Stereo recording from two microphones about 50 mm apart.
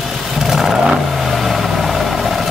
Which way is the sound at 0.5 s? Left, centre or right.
Centre.